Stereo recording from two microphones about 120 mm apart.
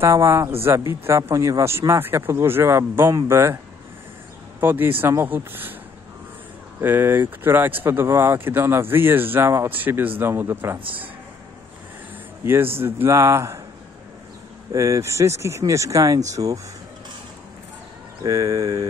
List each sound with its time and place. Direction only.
0.0 s speech: 25° right (ahead or behind)
4.6 s speech: 20° right (ahead or behind)
6.8 s speech: 15° right (ahead or behind)
12.4 s speech: 20° right (ahead or behind)
14.7 s speech: 25° right (ahead or behind)
18.2 s speech: 25° right (ahead or behind)